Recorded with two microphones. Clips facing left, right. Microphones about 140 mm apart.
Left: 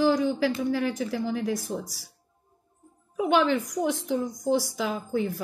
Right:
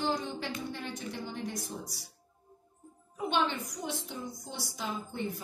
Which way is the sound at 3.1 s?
85° left.